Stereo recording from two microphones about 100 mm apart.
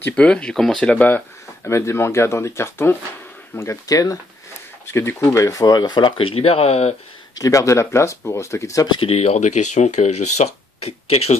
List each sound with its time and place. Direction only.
0.1 s speech: 10° left (ahead or behind); by 7.0 s 90° left
7.3 s speech: 35° left (ahead or behind)
8.9 s speech: 80° left